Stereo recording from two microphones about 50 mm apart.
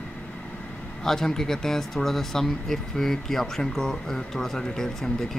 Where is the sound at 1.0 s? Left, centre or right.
Centre.